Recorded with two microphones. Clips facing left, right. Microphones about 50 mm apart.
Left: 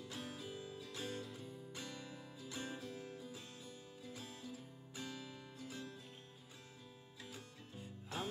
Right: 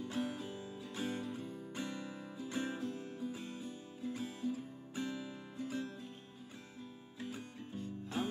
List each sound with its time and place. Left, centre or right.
0.0 s music: right
7.2 s music: right
8.2 s music: centre